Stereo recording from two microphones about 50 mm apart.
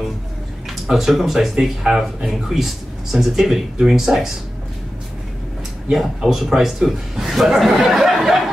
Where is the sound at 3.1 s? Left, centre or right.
Centre.